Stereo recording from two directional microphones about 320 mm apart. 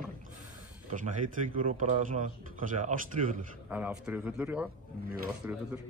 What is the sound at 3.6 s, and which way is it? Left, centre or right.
A man's voice, centre.